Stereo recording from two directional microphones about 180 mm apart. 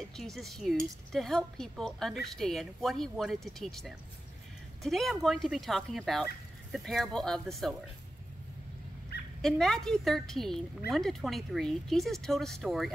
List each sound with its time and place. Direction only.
0.1 s a woman's voice: centre (ahead or behind)
9.4 s a woman's voice: centre (ahead or behind)